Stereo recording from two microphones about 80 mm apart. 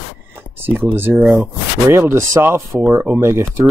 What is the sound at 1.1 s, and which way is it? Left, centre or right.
Speech, centre.